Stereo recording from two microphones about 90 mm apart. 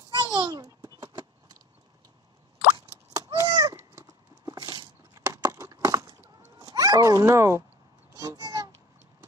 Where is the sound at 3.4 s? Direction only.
45° right (ahead or behind).